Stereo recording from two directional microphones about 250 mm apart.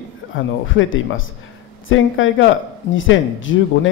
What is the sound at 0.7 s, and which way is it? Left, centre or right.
A man's voice, left.